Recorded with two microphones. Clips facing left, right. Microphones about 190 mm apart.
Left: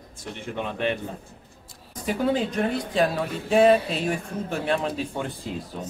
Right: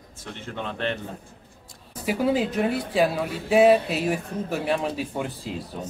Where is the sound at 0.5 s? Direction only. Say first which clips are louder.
Left 2 dB; 10° left (ahead or behind).